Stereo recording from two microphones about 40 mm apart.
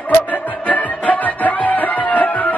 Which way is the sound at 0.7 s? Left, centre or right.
Left.